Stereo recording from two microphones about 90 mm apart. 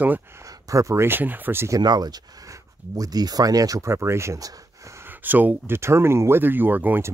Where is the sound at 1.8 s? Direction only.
50° right (ahead or behind).